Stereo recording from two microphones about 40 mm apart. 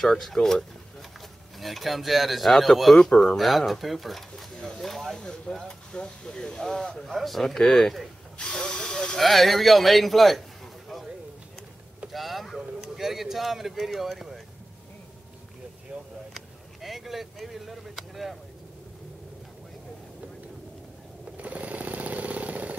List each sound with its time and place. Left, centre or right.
0.0 s speech: centre
4.8 s a sound: centre
5.6 s speech: left
7.1 s speech: centre
7.4 s speech: centre
8.4 s hiss: left
9.2 s speech: centre
12.1 s vehicle: centre
12.8 s speech: centre
15.9 s speech: right
16.3 s speech: centre
21.4 s vehicle: right